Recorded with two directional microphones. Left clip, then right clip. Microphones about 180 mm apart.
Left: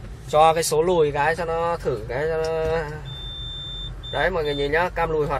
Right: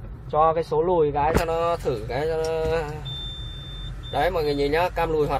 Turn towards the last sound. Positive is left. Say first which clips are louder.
# even
turn(degrees=-5)  # may be behind; listen again after turning